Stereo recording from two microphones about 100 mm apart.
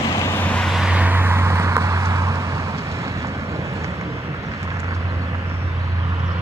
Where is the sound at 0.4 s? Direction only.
15° left (ahead or behind).